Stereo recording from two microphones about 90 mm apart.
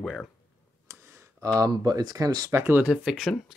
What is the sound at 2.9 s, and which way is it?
Speech, 5° right (ahead or behind).